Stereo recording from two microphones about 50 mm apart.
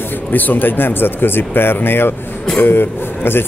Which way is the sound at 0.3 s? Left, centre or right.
Left.